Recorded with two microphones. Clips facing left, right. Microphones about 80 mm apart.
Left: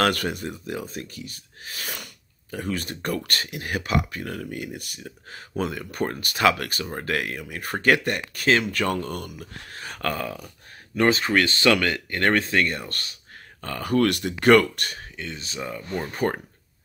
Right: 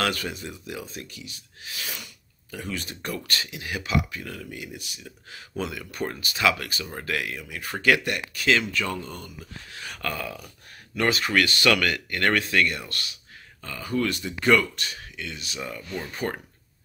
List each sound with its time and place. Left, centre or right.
0.0 s speech: left
6.9 s speech: left
8.7 s speech: left
15.1 s speech: left
15.8 s speech: left